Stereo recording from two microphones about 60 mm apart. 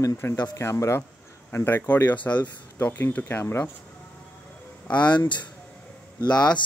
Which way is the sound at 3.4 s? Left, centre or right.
Left.